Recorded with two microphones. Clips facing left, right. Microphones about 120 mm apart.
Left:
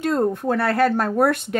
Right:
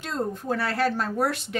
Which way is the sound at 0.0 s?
55° left (ahead or behind).